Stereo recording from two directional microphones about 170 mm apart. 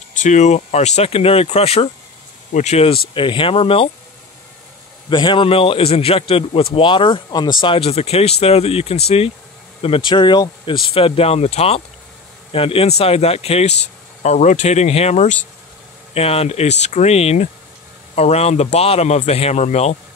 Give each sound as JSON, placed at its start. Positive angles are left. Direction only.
{"t": 0.2, "sound": "speech", "side_deg": 45}
{"t": 5.1, "sound": "speech", "side_deg": 30}